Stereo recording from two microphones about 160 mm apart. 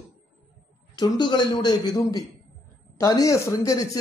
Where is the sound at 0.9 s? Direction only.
25° left (ahead or behind).